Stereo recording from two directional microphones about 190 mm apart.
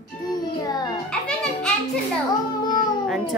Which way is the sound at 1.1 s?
5° left (ahead or behind).